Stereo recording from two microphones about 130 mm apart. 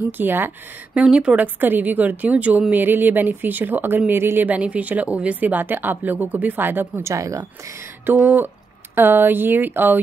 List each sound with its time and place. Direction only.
0.2 s speech: 15° right (ahead or behind)